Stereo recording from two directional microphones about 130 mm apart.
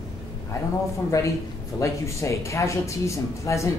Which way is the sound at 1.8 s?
25° left (ahead or behind).